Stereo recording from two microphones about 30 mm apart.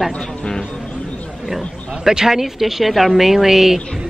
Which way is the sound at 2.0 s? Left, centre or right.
Centre.